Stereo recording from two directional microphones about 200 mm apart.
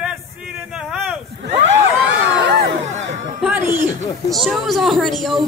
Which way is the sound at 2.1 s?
65° right (ahead or behind).